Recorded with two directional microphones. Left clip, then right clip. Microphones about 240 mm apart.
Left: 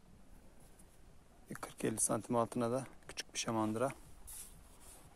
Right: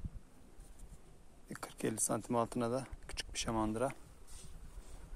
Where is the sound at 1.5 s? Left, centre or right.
Centre.